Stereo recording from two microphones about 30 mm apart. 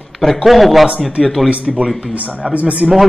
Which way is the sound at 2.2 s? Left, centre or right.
Right.